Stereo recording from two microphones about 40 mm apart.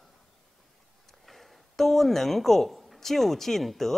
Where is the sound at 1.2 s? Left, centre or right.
Centre.